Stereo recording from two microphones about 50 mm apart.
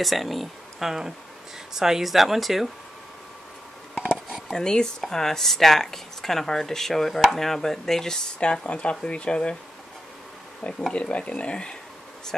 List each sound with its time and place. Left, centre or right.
0.0 s speech: centre
4.5 s speech: centre
10.9 s speech: left